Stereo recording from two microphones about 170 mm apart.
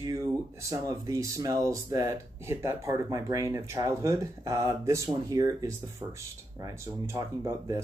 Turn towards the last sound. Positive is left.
turn(degrees=-20)  # may be behind; listen again after turning